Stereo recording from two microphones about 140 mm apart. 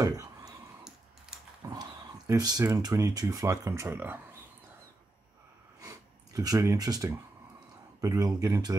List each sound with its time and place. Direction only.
0.0 s a sound: 25° right (ahead or behind)
1.3 s dog: 5° right (ahead or behind)
1.6 s speech: 25° right (ahead or behind)
5.8 s snort: 25° right (ahead or behind)
8.0 s speech: 25° right (ahead or behind)